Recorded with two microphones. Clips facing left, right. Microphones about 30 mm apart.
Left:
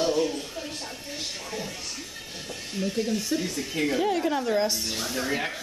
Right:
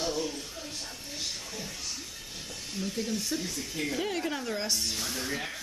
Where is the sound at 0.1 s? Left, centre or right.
Left.